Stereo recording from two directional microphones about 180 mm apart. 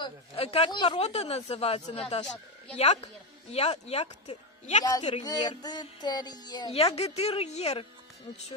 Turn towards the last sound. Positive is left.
turn(degrees=35)  # may be behind; listen again after turning